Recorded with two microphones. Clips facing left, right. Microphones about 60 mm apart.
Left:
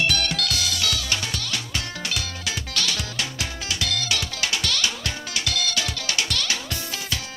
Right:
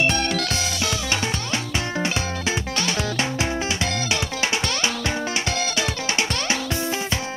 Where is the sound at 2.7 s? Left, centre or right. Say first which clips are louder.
Right 4 dB; right.